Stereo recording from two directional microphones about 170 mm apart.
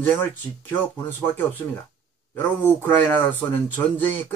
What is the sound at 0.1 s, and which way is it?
Speech, 10° left (ahead or behind).